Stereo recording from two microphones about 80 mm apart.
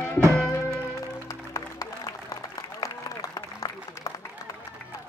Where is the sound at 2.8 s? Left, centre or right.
Left.